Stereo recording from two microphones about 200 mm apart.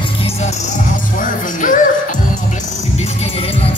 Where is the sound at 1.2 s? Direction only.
40° left (ahead or behind).